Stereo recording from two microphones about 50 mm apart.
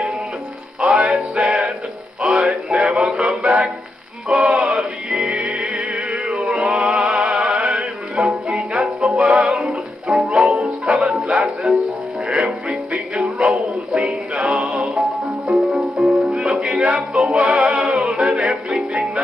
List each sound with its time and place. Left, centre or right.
0.7 s music: centre
2.7 s music: right
4.3 s male singing: centre
5.1 s music: centre
6.8 s music: centre
10.2 s music: right